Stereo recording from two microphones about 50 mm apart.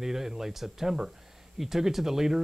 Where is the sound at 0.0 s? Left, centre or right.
Centre.